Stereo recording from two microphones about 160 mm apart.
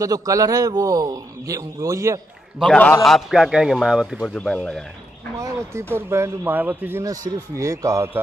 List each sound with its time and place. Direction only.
0.0 s a man's voice: 20° right (ahead or behind)
2.6 s a man's voice: 10° left (ahead or behind)
4.3 s a man's voice: 10° left (ahead or behind)
5.4 s speech: 15° right (ahead or behind)